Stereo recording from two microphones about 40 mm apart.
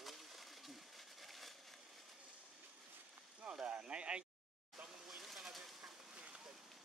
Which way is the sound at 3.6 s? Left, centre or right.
Right.